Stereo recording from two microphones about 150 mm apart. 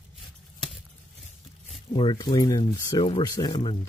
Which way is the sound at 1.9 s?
30° left (ahead or behind).